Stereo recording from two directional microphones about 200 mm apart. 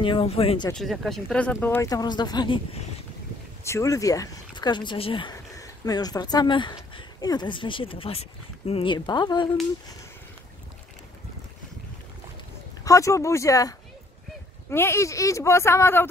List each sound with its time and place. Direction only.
0.0 s speech: 25° left (ahead or behind)
0.7 s speech: centre (ahead or behind); by 9.5 s 20° left (ahead or behind)
12.8 s speech: 15° left (ahead or behind)